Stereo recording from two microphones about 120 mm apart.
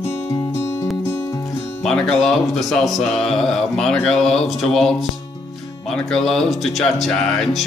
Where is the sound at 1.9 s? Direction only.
5° left (ahead or behind).